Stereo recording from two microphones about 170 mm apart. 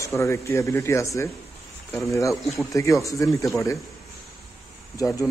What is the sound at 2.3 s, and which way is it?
Speech, centre (ahead or behind).